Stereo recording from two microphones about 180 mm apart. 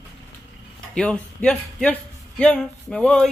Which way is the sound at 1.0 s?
5° left (ahead or behind).